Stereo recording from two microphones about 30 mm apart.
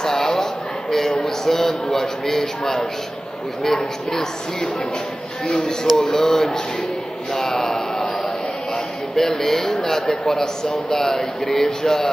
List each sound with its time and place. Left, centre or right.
0.0 s a sound: centre
1.2 s speech: centre
9.1 s speech: centre